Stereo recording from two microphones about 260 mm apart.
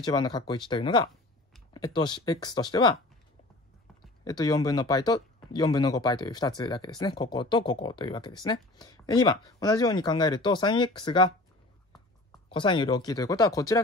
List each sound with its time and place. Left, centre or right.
0.0 s speech: centre
4.2 s speech: centre
12.4 s speech: centre